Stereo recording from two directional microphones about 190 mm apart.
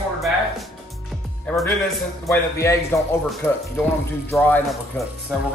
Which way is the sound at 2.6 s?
15° left (ahead or behind).